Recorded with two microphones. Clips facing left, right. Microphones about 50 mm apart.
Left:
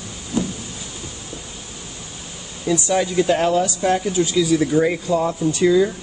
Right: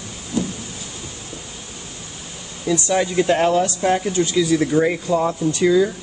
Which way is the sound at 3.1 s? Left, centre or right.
Right.